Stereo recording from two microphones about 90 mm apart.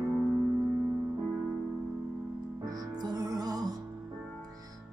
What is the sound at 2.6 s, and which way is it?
Music, 45° right (ahead or behind).